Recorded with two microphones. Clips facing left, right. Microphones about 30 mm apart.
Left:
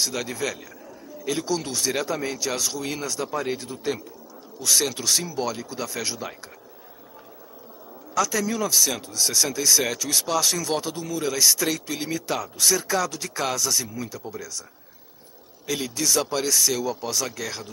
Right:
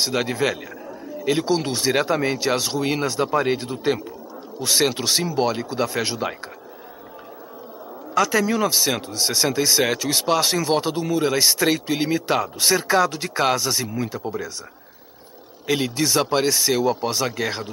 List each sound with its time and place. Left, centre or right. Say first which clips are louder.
0.0 s speech: right 6 dB; right
8.1 s a sound: right 4 dB; right
8.4 s speech: right 3 dB; right
15.6 s speech: right 5 dB; right